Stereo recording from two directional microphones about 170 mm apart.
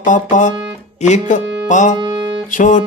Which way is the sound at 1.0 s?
45° left (ahead or behind).